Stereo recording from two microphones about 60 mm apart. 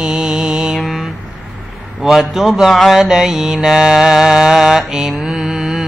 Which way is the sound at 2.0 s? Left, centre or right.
Centre.